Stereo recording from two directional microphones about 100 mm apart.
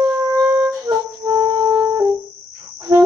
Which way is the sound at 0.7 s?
35° right (ahead or behind).